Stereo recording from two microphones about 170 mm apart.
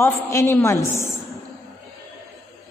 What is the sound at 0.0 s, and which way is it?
A woman's voice, 15° left (ahead or behind).